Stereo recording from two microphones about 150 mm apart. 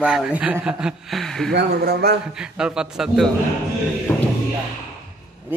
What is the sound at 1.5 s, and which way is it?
Speech, 90° right.